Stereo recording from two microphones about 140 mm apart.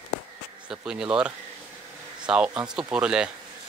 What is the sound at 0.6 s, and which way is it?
Speech, 5° right (ahead or behind).